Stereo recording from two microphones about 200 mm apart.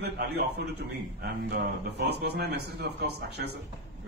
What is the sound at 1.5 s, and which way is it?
Speech, 55° right (ahead or behind).